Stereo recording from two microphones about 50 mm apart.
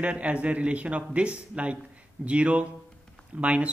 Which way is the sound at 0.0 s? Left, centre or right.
Right.